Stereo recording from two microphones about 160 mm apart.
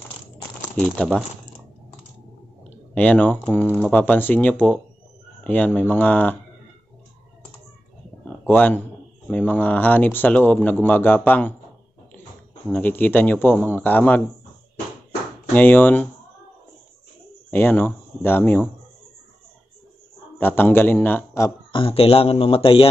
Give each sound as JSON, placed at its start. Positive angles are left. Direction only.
{"t": 0.7, "sound": "speech", "side_deg": 5}
{"t": 2.9, "sound": "speech", "side_deg": 10}
{"t": 8.5, "sound": "speech", "side_deg": 10}
{"t": 12.6, "sound": "speech", "side_deg": 10}
{"t": 15.5, "sound": "speech", "side_deg": 10}
{"t": 17.5, "sound": "speech", "side_deg": 15}
{"t": 20.3, "sound": "speech", "side_deg": 10}
{"t": 21.7, "sound": "speech", "side_deg": 35}